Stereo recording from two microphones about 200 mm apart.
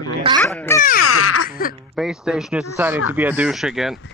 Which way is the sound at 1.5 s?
45° left (ahead or behind).